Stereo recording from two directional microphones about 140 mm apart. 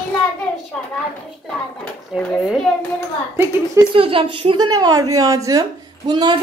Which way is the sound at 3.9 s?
40° right (ahead or behind).